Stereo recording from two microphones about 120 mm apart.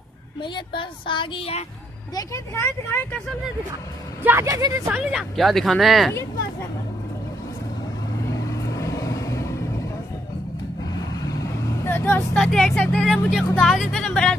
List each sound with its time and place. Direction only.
0.4 s speech: 45° left (ahead or behind)
2.1 s speech: 25° left (ahead or behind)
4.2 s a woman's voice: 15° right (ahead or behind)
4.5 s speech: 30° right (ahead or behind)
4.9 s speech: 5° right (ahead or behind)
8.3 s vehicle: 25° left (ahead or behind)
11.1 s vehicle: 30° left (ahead or behind)
12.4 s speech: 5° left (ahead or behind)
13.1 s speech: 5° right (ahead or behind)